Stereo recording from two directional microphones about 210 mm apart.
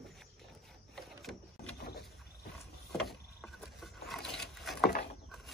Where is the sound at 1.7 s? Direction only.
50° left (ahead or behind).